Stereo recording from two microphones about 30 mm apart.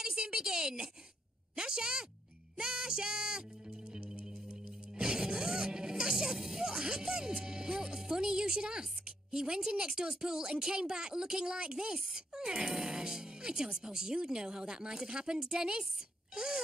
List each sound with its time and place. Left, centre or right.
0.0 s a sound: right
1.5 s a woman's voice: right
2.5 s music: right
4.9 s music: right
6.3 s speech: centre